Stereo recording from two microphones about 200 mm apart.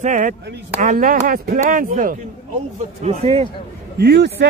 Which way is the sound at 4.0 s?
55° right (ahead or behind).